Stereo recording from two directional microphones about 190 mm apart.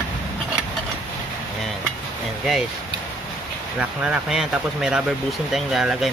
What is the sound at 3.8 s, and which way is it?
Speech, 5° right (ahead or behind).